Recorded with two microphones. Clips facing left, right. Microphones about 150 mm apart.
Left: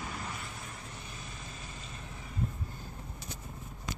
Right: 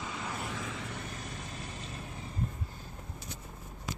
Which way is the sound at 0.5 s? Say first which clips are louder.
Right 7 dB; 90° right.